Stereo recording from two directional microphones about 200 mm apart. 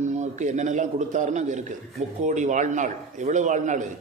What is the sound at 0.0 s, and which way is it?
A man's voice, 35° right (ahead or behind).